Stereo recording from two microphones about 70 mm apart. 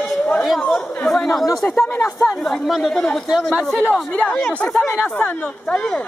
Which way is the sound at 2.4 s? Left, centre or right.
Centre.